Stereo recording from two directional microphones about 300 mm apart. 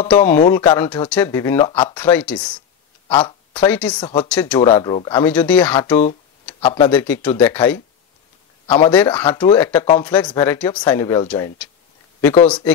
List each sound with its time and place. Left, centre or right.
0.1 s speech: centre
2.0 s speech: centre
3.1 s a sound: centre
3.6 s speech: centre
6.6 s speech: centre
6.9 s speech: centre